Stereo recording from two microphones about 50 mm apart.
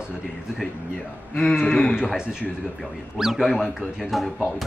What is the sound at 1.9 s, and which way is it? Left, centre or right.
A man's voice, centre.